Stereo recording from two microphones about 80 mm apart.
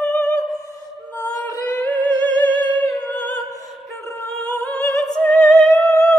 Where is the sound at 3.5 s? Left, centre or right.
Left.